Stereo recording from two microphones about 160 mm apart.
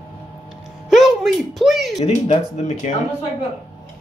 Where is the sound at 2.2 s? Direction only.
45° left (ahead or behind).